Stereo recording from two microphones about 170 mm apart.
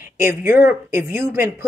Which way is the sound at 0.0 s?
15° right (ahead or behind).